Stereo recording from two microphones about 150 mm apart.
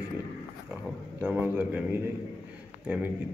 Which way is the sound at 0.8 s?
10° right (ahead or behind).